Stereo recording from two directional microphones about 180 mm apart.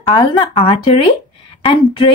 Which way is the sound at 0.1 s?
25° left (ahead or behind).